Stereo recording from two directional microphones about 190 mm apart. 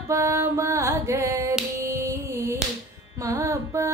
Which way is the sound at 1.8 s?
15° right (ahead or behind).